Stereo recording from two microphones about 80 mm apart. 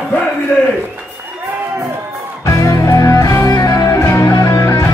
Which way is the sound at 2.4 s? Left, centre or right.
Left.